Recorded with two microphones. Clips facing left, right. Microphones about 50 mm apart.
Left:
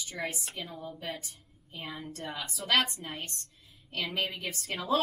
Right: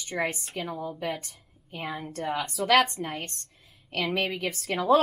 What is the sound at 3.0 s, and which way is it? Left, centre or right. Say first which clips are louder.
A woman's voice: right 6 dB; right.